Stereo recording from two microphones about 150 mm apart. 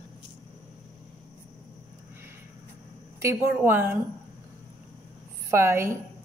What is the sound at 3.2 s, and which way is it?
Speech, 15° right (ahead or behind).